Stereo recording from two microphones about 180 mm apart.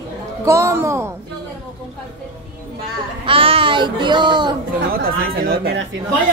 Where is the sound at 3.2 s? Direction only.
30° right (ahead or behind).